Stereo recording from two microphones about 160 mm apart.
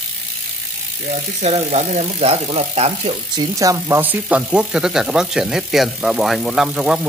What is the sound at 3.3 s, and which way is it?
Speech, 20° right (ahead or behind).